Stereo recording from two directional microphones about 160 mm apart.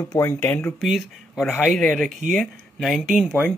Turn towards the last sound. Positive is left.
turn(degrees=-5)  # may be behind; listen again after turning